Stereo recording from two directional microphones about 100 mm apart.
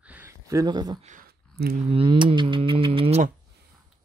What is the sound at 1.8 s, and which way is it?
Speech, 65° right (ahead or behind).